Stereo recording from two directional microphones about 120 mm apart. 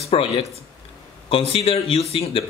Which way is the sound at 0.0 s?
55° left (ahead or behind).